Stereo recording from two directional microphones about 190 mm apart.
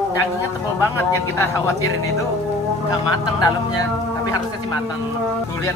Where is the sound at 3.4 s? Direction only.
20° left (ahead or behind).